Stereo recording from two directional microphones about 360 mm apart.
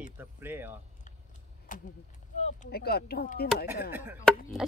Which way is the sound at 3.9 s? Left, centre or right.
Centre.